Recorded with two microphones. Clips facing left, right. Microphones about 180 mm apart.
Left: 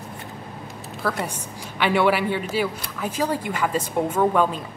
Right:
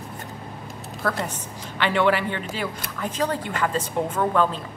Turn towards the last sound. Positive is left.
turn(degrees=10)  # may be behind; listen again after turning